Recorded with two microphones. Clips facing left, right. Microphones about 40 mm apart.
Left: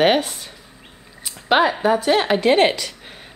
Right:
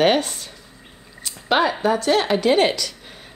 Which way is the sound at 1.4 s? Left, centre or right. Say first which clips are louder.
Left 2 dB; centre.